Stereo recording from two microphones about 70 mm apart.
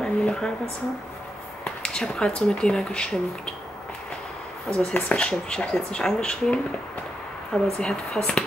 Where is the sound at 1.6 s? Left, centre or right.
Centre.